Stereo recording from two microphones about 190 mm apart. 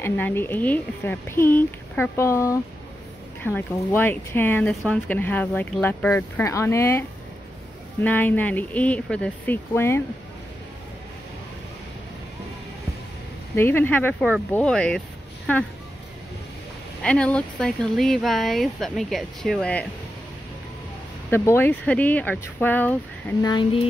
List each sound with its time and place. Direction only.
0.0 s speech: 10° left (ahead or behind)
13.6 s speech: 10° left (ahead or behind)
17.0 s speech: 5° left (ahead or behind)
21.3 s speech: 10° left (ahead or behind)
23.4 s speech: 25° left (ahead or behind)